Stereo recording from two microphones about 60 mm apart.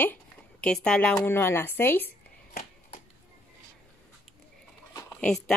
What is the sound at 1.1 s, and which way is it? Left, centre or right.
Speech, left.